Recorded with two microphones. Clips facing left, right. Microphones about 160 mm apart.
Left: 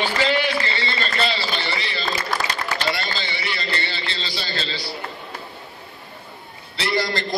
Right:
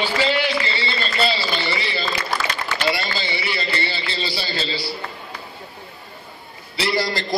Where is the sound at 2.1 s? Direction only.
40° left (ahead or behind).